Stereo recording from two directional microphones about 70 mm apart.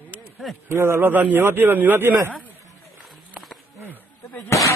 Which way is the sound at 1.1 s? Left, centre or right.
Right.